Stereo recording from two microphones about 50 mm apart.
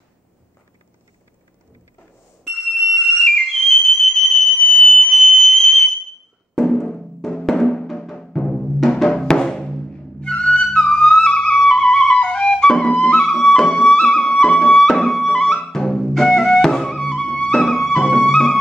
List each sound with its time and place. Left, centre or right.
2.4 s a sound: centre
3.0 s music: centre
4.1 s fire alarm: centre
4.9 s sine wave: centre
5.3 s whistle: centre
6.7 s music: centre
12.8 s music: left
13.2 s music: centre